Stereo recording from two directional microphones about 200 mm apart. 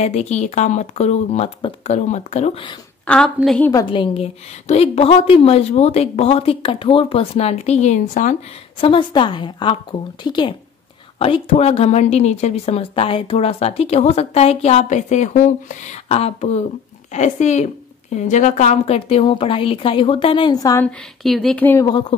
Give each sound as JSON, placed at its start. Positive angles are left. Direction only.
{"t": 0.0, "sound": "a woman's voice", "side_deg": 35}
{"t": 3.5, "sound": "speech", "side_deg": 10}
{"t": 3.9, "sound": "a woman's voice", "side_deg": 25}
{"t": 8.8, "sound": "a woman's voice", "side_deg": 25}
{"t": 21.2, "sound": "speech", "side_deg": 0}